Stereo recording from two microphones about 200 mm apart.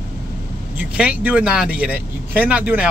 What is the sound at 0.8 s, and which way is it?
Speech, 5° right (ahead or behind).